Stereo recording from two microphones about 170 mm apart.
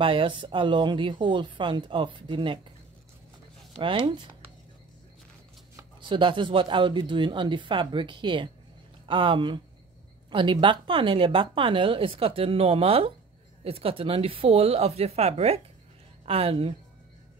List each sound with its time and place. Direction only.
0.0 s speech: 30° right (ahead or behind)
3.7 s speech: 30° right (ahead or behind)
5.8 s a woman's voice: 30° right (ahead or behind)